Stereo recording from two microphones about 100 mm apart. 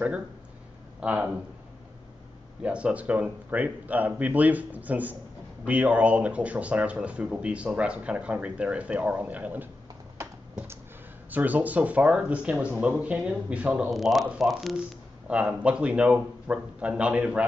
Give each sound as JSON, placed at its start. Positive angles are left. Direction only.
{"t": 1.0, "sound": "speech", "side_deg": -15}
{"t": 2.6, "sound": "speech", "side_deg": -10}
{"t": 11.2, "sound": "speech", "side_deg": -15}
{"t": 13.8, "sound": "speech", "side_deg": 0}
{"t": 15.2, "sound": "speech", "side_deg": -10}